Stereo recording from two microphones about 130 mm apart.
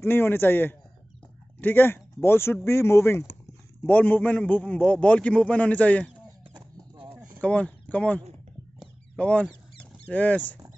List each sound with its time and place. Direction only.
0.0 s a man's voice: 15° left (ahead or behind)
6.5 s a sound: 35° right (ahead or behind)
7.4 s speech: 10° left (ahead or behind)
8.7 s rodents: 5° left (ahead or behind)